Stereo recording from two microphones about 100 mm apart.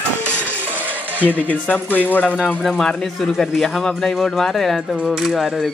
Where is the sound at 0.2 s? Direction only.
20° right (ahead or behind).